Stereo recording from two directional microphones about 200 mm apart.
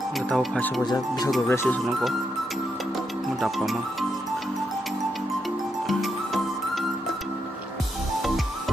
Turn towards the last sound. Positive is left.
turn(degrees=0)  # may be behind; listen again after turning